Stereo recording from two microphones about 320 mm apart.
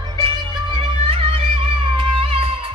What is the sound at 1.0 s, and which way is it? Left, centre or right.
Music, centre.